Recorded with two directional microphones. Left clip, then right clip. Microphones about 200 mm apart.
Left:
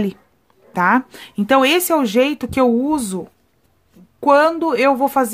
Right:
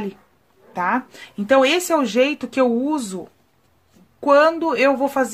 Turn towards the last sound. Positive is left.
turn(degrees=25)  # may be behind; listen again after turning